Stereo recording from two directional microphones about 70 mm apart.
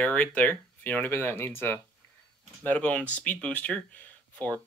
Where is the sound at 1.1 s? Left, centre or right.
Left.